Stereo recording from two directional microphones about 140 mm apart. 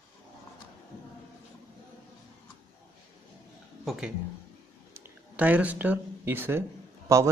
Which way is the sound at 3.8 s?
Centre (ahead or behind).